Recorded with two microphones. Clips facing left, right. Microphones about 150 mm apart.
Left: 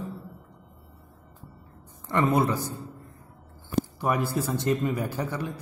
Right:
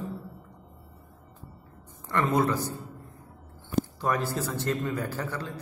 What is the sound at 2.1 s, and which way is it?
Speech, 15° left (ahead or behind).